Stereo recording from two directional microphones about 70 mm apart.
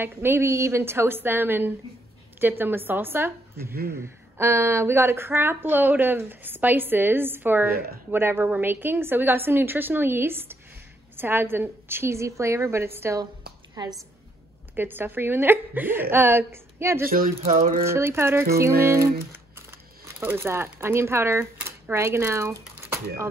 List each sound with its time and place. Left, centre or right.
0.0 s speech: right
13.8 s a woman's voice: right
14.8 s speech: right
20.2 s speech: right